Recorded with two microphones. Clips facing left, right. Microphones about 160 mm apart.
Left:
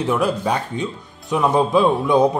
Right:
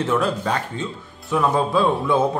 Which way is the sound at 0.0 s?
10° left (ahead or behind).